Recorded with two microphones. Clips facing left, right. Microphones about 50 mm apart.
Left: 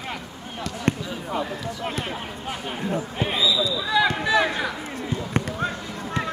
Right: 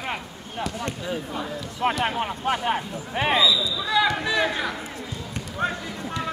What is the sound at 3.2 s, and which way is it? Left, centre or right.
Speech, right.